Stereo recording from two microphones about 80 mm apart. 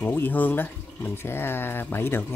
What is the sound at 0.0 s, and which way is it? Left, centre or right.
Speech, left.